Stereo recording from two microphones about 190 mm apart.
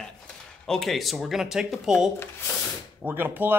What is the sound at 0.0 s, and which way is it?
Speech, centre (ahead or behind).